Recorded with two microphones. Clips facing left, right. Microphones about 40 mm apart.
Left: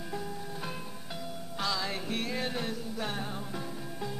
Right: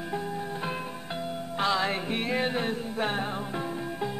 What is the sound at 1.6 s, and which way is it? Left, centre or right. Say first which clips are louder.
Music: right 7 dB; right.